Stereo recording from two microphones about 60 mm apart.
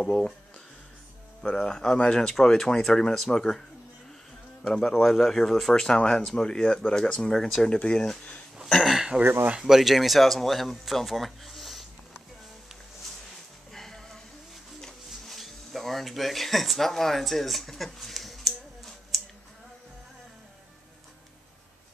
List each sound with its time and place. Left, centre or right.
0.0 s speech: centre
1.4 s speech: centre
4.6 s speech: centre
8.5 s speech: centre
9.2 s speech: right
9.7 s speech: centre
13.7 s a sound: centre